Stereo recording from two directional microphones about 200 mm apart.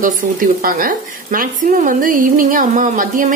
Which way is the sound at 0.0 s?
45° right (ahead or behind).